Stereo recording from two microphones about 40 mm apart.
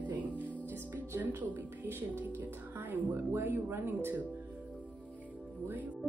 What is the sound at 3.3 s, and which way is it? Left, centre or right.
Speech, right.